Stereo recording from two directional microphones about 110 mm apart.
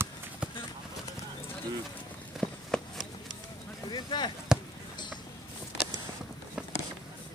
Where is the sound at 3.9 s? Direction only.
40° left (ahead or behind).